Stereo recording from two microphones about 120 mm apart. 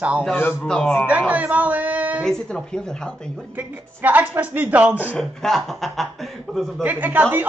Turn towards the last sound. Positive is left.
turn(degrees=-15)  # may be behind; listen again after turning